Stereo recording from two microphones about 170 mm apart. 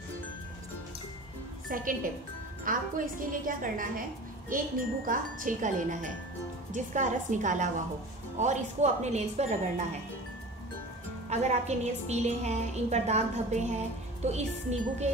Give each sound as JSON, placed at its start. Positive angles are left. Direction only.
{"t": 1.7, "sound": "speech", "side_deg": -55}
{"t": 5.0, "sound": "speech", "side_deg": -55}
{"t": 11.2, "sound": "a woman's voice", "side_deg": -40}